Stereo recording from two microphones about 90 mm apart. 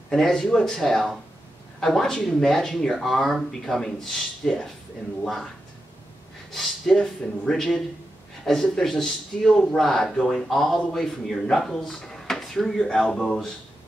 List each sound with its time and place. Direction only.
0.1 s speech: 5° left (ahead or behind)
6.5 s speech: 5° left (ahead or behind)